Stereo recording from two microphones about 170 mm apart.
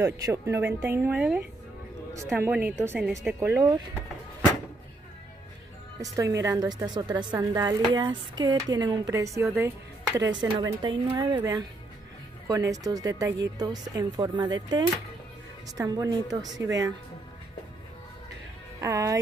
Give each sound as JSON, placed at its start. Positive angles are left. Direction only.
{"t": 0.0, "sound": "speech", "side_deg": -15}
{"t": 5.9, "sound": "speech", "side_deg": -20}
{"t": 18.8, "sound": "speech", "side_deg": -20}